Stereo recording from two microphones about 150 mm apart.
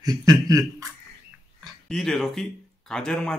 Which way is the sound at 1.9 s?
5° left (ahead or behind).